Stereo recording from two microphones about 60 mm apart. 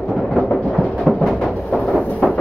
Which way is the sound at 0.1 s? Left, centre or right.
Centre.